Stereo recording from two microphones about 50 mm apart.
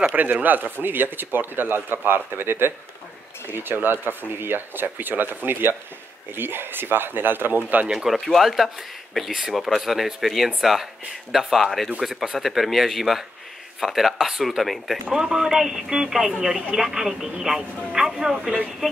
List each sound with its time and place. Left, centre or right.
0.1 s speech: right
8.3 s speech: centre